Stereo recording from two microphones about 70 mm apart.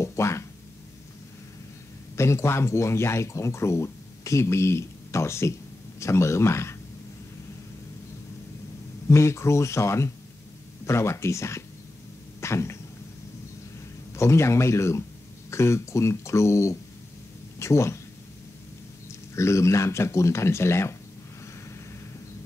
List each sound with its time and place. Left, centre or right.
0.0 s music: left
2.1 s speech: left
9.1 s speech: left
12.4 s cough: left
14.1 s speech: left
19.0 s speech: left